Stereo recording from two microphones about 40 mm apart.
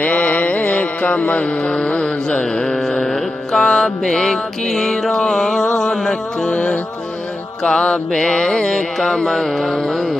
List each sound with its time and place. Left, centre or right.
0.0 s music: left
1.7 s mantra: left
3.5 s mantra: centre
6.5 s music: left
7.6 s mantra: left
8.2 s mantra: centre